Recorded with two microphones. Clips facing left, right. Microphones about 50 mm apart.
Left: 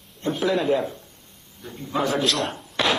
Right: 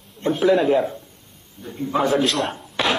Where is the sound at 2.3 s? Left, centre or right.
Centre.